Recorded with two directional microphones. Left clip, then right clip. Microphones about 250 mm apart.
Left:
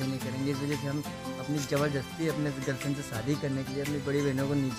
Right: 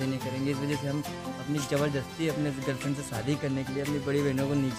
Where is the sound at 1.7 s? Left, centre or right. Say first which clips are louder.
Right 1 dB; centre.